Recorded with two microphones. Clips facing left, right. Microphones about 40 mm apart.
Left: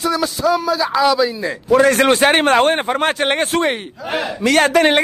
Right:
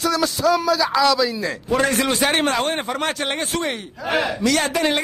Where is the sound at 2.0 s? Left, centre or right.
Left.